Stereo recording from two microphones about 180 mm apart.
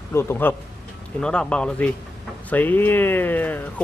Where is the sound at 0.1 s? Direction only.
15° left (ahead or behind).